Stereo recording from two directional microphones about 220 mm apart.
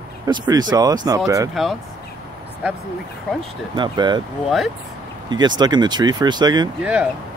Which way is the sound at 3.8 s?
20° right (ahead or behind).